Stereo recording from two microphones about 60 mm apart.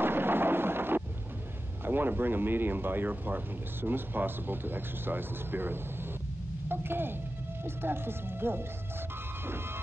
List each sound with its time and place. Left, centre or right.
0.0 s thunder: right
1.9 s speech: right
6.7 s music: right
7.6 s speech: right